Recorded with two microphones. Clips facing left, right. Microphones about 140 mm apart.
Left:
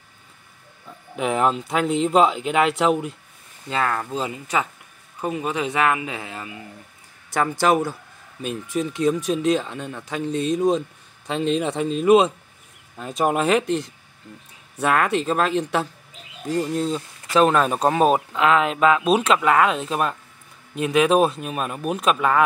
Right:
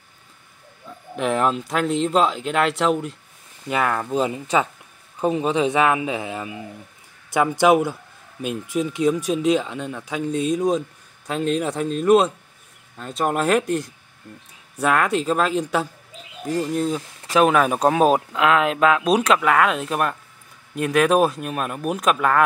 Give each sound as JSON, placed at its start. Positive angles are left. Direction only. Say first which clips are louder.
{"t": 1.1, "sound": "speech", "louder": "even", "side_deg": 5}
{"t": 3.6, "sound": "speech", "louder": "right 2 dB", "side_deg": -15}
{"t": 7.6, "sound": "speech", "louder": "right 4 dB", "side_deg": -10}